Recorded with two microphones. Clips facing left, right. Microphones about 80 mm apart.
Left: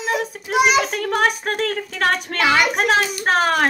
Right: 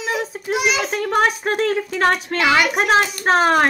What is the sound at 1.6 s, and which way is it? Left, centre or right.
Speech, centre.